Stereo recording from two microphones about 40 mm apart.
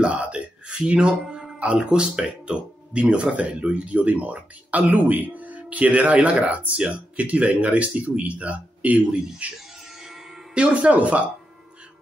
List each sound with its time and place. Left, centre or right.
0.0 s speech: right
9.9 s music: centre
10.5 s speech: right